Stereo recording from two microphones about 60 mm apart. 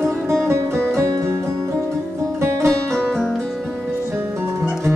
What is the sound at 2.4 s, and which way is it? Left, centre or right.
Music, right.